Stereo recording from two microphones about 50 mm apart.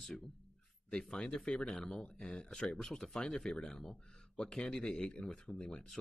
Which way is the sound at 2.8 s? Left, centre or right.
Centre.